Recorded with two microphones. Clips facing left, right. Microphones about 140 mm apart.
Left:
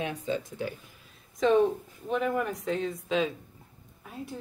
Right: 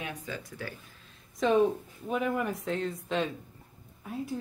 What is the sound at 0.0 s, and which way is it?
Speech, 25° left (ahead or behind).